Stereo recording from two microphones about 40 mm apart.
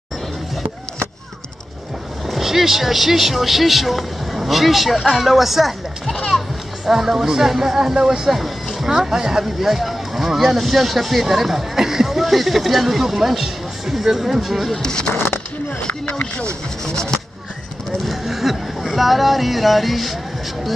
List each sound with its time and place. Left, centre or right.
2.2 s speech: centre
8.3 s speech: centre
14.8 s speech: centre
15.1 s a sound: left
15.8 s speech: left
16.8 s speech: centre
18.0 s speech: centre